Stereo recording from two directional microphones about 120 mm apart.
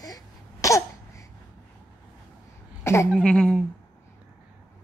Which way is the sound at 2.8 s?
20° left (ahead or behind).